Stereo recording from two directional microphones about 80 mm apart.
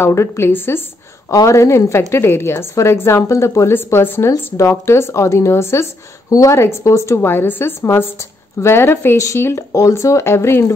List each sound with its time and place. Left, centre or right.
0.0 s a woman's voice: left
1.3 s a woman's voice: left